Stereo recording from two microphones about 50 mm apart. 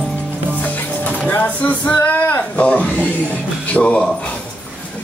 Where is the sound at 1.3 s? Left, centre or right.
Left.